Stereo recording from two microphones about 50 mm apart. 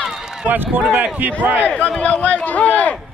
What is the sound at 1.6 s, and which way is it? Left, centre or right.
A man's voice, left.